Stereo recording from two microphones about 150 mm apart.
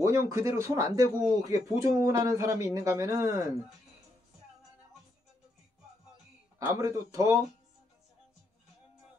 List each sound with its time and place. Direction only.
0.0 s speech: 20° right (ahead or behind)
6.6 s speech: 20° right (ahead or behind)